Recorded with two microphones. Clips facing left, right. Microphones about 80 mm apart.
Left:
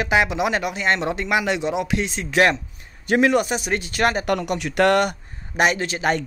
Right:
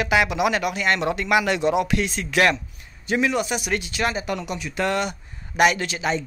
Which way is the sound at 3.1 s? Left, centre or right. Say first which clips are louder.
Left 4 dB; left.